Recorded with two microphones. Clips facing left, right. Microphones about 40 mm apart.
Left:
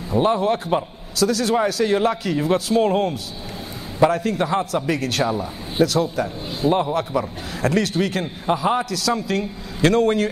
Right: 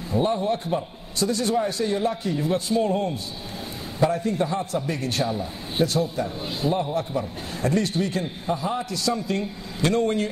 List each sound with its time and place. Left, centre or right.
0.1 s a man's voice: left